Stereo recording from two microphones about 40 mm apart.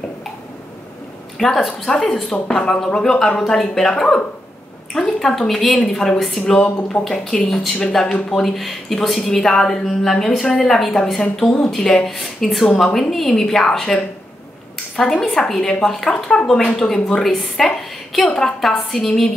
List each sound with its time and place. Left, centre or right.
1.4 s a woman's voice: centre
2.4 s speech: centre
6.1 s a woman's voice: centre
6.4 s speech: left
15.0 s a woman's voice: centre